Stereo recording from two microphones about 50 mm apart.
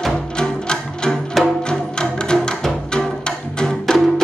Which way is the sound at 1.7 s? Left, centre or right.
Centre.